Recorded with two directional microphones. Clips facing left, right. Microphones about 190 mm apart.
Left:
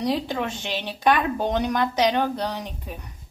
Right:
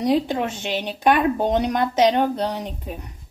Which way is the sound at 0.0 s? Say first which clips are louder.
Right 5 dB; 20° right (ahead or behind).